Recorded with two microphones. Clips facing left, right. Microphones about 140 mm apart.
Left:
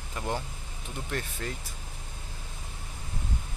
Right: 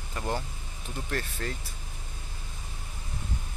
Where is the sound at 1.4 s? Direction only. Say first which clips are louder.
Right 1 dB; 10° left (ahead or behind).